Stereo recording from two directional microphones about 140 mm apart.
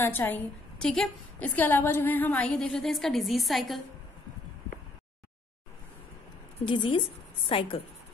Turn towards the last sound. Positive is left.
turn(degrees=40)  # may be behind; listen again after turning